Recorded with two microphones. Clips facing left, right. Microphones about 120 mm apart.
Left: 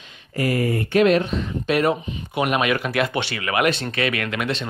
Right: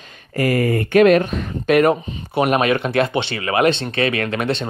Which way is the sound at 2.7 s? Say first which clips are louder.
Right 4 dB; 30° right (ahead or behind).